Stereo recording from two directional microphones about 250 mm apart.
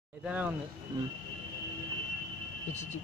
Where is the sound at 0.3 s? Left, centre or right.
Centre.